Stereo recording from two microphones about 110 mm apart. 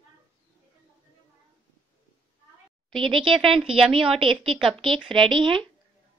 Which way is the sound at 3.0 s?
50° right (ahead or behind).